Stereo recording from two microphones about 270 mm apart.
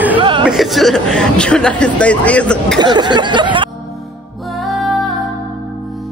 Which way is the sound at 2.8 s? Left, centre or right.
Centre.